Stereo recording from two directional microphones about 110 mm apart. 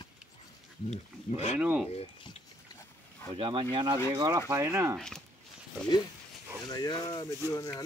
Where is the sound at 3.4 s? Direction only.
50° right (ahead or behind).